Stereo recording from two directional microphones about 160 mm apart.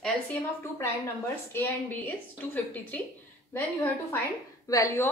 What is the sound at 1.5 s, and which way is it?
A woman's voice, 10° left (ahead or behind).